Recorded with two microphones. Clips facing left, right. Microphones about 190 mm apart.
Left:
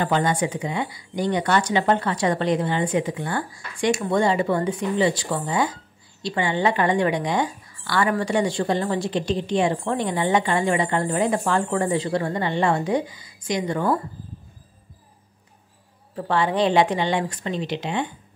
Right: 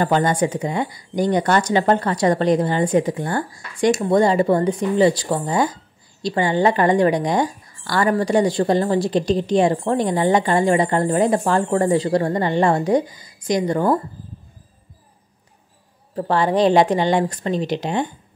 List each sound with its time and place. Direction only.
0.0 s a woman's voice: 45° right (ahead or behind)
16.2 s a woman's voice: 40° right (ahead or behind)